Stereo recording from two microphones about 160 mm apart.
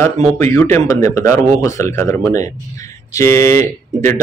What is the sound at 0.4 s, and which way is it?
A man's voice, 15° left (ahead or behind).